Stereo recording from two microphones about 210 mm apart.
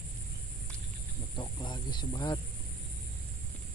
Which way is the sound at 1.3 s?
20° left (ahead or behind).